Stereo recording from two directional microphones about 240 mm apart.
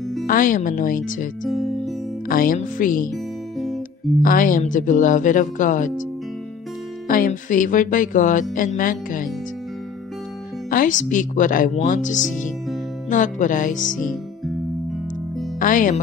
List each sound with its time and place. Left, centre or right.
0.3 s music: left
1.5 s music: centre
2.2 s music: left
3.5 s guitar: centre
4.2 s music: left
7.1 s music: left
10.7 s music: left
15.6 s music: left